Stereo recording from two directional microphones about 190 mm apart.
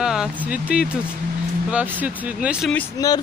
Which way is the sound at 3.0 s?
20° left (ahead or behind).